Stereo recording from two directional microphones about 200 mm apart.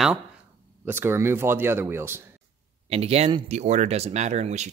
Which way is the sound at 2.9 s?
30° right (ahead or behind).